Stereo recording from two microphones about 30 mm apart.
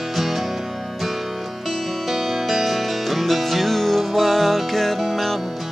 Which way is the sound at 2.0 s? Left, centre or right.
Centre.